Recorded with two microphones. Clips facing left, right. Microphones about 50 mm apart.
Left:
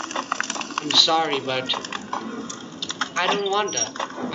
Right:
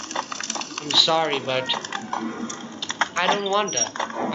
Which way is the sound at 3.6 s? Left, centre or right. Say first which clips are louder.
Right 1 dB; right.